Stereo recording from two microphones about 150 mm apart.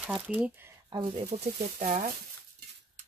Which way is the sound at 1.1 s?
55° right (ahead or behind).